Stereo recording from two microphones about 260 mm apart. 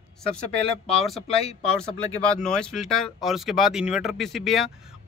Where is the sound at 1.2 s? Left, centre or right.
Left.